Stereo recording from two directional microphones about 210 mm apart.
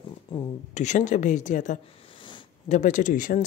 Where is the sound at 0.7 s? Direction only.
35° left (ahead or behind).